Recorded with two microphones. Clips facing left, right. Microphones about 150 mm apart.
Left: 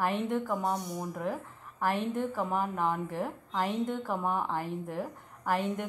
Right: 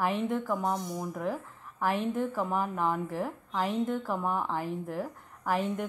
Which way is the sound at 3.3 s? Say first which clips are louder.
Right 1 dB; 10° right (ahead or behind).